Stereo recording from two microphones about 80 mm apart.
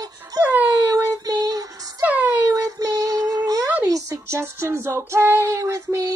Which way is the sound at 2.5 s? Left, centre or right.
Right.